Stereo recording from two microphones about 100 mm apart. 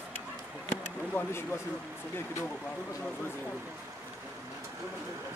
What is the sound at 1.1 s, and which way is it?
Speech, 20° left (ahead or behind).